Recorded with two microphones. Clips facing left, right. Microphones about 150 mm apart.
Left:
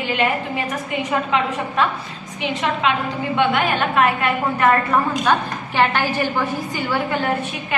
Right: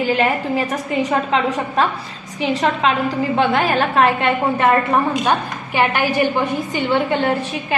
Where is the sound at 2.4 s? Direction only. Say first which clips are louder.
Right 3 dB; 35° right (ahead or behind).